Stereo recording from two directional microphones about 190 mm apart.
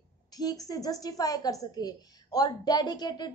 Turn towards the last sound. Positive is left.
turn(degrees=20)  # may be behind; listen again after turning